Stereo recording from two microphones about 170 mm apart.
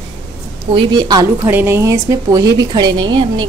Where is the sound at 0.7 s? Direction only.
25° right (ahead or behind).